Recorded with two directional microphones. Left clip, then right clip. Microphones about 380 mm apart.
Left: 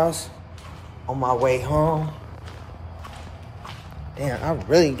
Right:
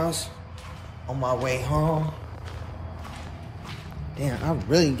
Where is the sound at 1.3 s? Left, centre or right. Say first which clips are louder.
Left 7 dB; centre.